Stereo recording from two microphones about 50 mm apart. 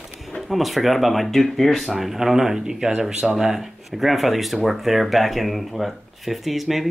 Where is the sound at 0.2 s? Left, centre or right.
Centre.